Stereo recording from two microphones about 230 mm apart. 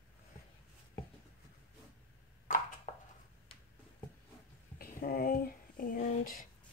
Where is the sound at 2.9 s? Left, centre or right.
Left.